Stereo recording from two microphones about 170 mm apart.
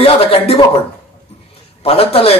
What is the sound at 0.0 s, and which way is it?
Speech, 35° left (ahead or behind).